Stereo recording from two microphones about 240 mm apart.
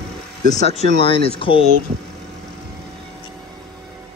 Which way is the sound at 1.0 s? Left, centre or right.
Left.